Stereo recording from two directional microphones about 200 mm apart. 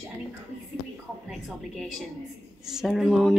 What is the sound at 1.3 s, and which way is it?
A woman's voice, centre (ahead or behind).